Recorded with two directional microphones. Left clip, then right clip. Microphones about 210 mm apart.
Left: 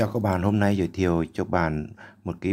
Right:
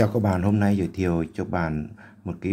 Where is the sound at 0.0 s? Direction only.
10° left (ahead or behind).